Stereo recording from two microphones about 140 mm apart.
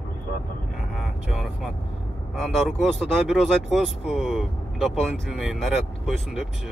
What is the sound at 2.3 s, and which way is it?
Speech, centre (ahead or behind).